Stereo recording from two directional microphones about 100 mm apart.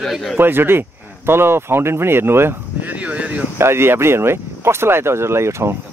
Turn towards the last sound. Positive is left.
turn(degrees=-25)  # may be behind; listen again after turning